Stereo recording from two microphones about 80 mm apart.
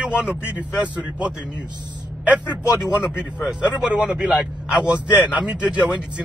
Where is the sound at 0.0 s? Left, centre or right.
Centre.